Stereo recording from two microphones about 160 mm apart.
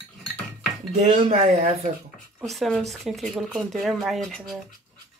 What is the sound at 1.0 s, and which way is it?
Speech, 45° right (ahead or behind).